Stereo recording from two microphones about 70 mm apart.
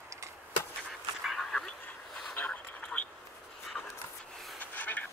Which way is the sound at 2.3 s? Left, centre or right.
Left.